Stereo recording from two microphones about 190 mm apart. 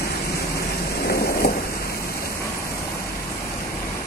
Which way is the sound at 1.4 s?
60° left (ahead or behind).